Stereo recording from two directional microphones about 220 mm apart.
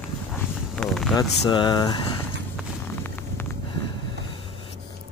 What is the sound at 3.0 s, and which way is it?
Vehicle, 10° left (ahead or behind).